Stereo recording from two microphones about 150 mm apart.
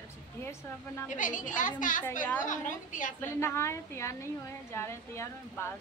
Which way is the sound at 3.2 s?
15° left (ahead or behind).